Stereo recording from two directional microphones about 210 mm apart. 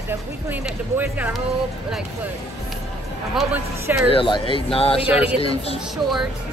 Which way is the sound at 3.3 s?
5° right (ahead or behind).